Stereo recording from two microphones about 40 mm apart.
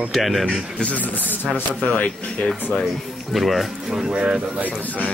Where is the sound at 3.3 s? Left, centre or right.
Centre.